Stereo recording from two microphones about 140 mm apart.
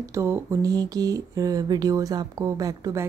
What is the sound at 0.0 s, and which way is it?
Speech, 20° right (ahead or behind).